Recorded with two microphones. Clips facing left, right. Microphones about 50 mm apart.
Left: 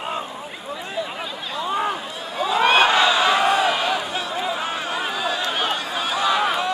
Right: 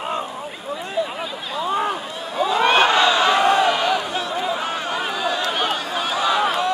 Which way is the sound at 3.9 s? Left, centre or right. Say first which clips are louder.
Right 2 dB; centre.